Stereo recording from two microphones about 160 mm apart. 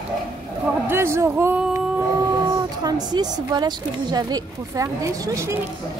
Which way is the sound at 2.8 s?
25° right (ahead or behind).